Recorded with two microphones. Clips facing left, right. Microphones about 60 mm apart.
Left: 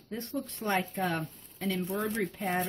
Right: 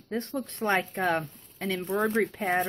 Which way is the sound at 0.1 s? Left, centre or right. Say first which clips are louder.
Right 4 dB; right.